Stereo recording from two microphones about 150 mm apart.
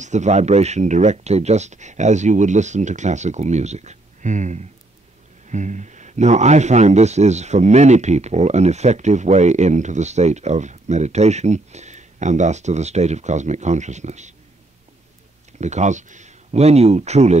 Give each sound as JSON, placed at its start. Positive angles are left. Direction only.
{"t": 0.0, "sound": "speech", "side_deg": -50}
{"t": 15.6, "sound": "speech", "side_deg": -50}